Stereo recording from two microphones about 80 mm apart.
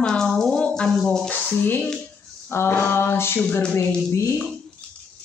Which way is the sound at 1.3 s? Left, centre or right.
Left.